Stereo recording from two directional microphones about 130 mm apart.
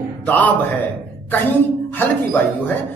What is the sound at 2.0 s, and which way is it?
Speech, 15° left (ahead or behind).